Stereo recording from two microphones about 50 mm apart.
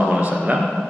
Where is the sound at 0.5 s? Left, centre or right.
Centre.